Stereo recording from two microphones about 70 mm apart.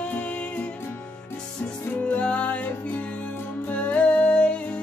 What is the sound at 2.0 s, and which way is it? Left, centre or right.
Music, centre.